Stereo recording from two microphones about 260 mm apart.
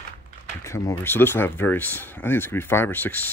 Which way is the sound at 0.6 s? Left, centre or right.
Centre.